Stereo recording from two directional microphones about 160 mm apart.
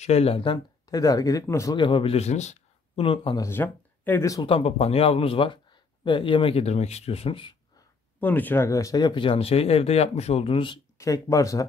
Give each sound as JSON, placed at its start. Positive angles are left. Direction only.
{"t": 0.0, "sound": "speech", "side_deg": 40}
{"t": 1.8, "sound": "speech", "side_deg": 35}
{"t": 3.0, "sound": "speech", "side_deg": 35}
{"t": 3.3, "sound": "speech", "side_deg": 15}
{"t": 4.5, "sound": "speech", "side_deg": 40}
{"t": 8.2, "sound": "speech", "side_deg": 10}
{"t": 11.0, "sound": "speech", "side_deg": 20}